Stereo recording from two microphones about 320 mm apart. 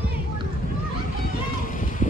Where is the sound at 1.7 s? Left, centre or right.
Left.